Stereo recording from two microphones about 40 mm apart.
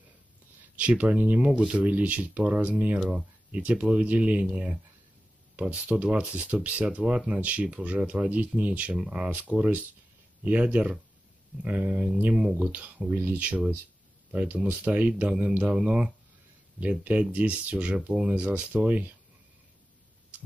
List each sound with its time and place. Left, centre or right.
0.7 s speech: right
1.5 s speech: right
1.8 s speech: right
8.9 s speech: right
9.3 s speech: right
15.2 s speech: right
17.0 s speech: right
18.7 s speech: right